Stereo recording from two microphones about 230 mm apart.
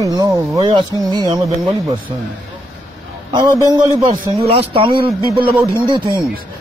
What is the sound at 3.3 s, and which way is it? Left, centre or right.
A man's voice, centre.